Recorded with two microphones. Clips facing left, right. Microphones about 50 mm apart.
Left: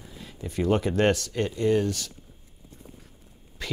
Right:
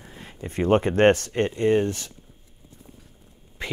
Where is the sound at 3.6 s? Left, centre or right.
Right.